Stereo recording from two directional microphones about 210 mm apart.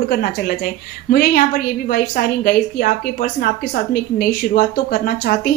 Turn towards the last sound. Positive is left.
turn(degrees=45)  # may be behind; listen again after turning